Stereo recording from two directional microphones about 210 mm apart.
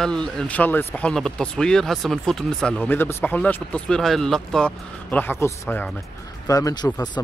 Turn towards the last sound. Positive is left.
turn(degrees=20)  # may be behind; listen again after turning